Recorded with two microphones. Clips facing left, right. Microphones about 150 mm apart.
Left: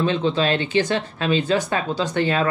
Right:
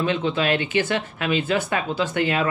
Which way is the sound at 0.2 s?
20° left (ahead or behind).